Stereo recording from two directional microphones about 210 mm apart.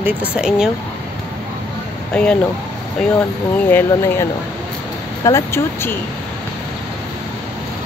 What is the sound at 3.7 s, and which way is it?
Speech, 10° left (ahead or behind).